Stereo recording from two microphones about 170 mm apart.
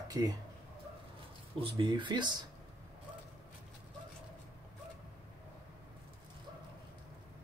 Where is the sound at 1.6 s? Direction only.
30° right (ahead or behind).